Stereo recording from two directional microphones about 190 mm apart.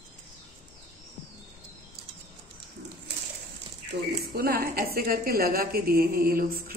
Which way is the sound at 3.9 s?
60° right (ahead or behind).